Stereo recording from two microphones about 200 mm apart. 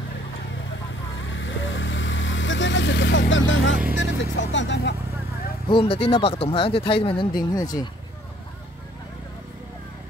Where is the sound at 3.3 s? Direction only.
70° left (ahead or behind).